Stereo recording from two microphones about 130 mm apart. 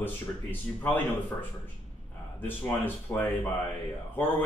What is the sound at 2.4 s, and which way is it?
Speech, 15° left (ahead or behind).